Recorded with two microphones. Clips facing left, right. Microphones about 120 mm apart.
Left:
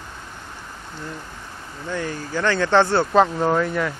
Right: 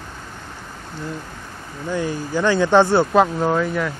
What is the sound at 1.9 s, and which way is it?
Speech, 15° right (ahead or behind).